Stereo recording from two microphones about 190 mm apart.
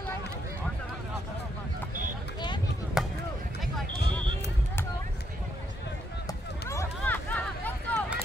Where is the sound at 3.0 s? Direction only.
5° right (ahead or behind).